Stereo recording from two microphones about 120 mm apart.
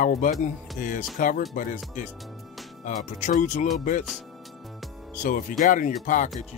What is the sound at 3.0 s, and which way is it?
Speech, 80° left.